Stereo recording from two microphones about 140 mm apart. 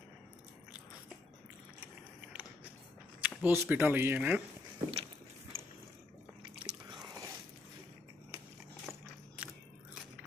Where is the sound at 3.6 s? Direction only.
15° right (ahead or behind).